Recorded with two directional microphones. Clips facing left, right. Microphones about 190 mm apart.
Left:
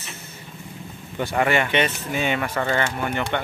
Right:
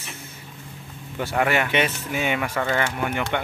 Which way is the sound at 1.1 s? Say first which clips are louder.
Left 1 dB; centre (ahead or behind).